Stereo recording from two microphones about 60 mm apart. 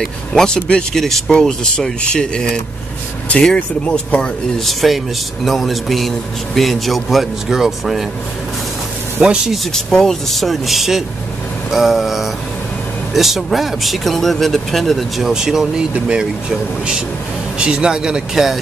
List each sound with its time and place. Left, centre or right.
0.0 s speech: centre
3.5 s speech: left
4.6 s a man's voice: centre
9.2 s speech: centre
9.7 s a man's voice: centre